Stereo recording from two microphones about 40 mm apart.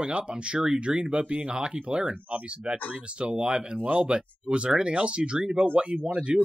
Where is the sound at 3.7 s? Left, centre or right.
Right.